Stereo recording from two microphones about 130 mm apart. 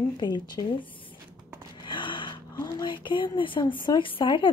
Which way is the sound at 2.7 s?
35° left (ahead or behind).